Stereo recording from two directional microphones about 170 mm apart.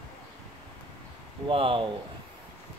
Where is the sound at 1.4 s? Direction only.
30° right (ahead or behind).